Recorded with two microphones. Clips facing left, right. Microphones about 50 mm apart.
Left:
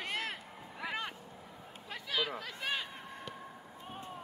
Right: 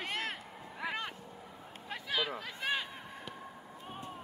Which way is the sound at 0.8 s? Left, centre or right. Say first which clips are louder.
Right 1 dB; centre.